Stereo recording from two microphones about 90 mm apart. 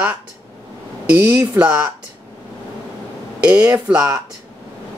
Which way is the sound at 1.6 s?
15° right (ahead or behind).